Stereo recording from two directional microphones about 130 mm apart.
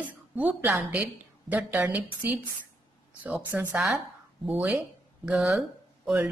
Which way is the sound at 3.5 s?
10° right (ahead or behind).